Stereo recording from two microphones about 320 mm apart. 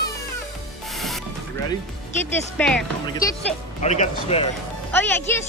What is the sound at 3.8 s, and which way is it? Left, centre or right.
Speech, centre.